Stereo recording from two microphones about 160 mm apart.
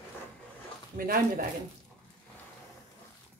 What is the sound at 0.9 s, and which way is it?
Speech, 65° right (ahead or behind).